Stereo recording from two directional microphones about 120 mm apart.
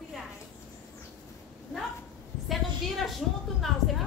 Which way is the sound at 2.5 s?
Centre (ahead or behind).